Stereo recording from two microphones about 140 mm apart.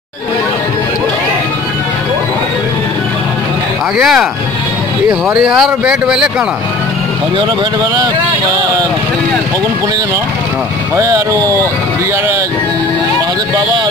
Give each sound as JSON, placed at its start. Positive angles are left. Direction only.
{"t": 4.0, "sound": "speech", "side_deg": -5}
{"t": 11.0, "sound": "speech", "side_deg": -25}